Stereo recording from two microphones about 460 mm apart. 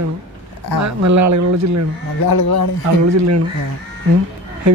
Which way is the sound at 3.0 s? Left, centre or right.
Right.